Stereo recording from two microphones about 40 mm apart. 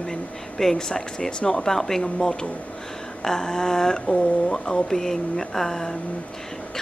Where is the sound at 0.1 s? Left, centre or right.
Centre.